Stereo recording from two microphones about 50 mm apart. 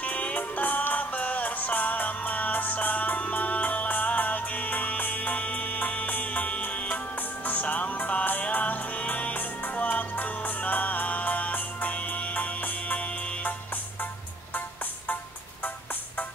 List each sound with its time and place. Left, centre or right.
0.0 s music: left